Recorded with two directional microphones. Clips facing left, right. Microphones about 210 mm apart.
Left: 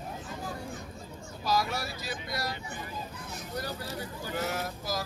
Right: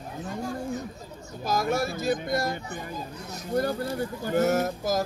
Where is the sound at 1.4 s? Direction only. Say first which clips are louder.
Right 5 dB; 50° right (ahead or behind).